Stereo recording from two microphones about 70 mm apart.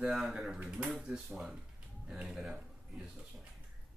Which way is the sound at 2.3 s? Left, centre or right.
Centre.